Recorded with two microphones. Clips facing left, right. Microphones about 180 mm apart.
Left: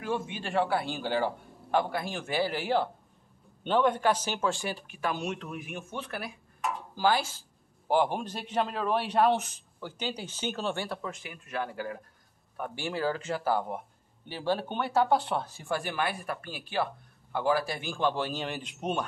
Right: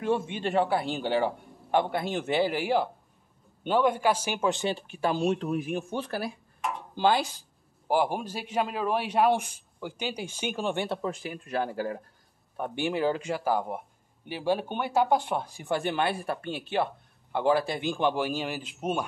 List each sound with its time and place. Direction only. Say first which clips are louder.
0.0 s a man's voice: right 5 dB; 25° right (ahead or behind)
7.0 s a man's voice: right 2 dB; 20° right (ahead or behind)
11.0 s speech: right 7 dB; 35° right (ahead or behind)
12.5 s a man's voice: right 5 dB; 20° right (ahead or behind); by 19.0 s 5° right (ahead or behind)